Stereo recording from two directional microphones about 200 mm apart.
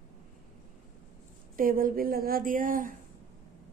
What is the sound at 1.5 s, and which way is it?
A woman's voice, 45° right (ahead or behind).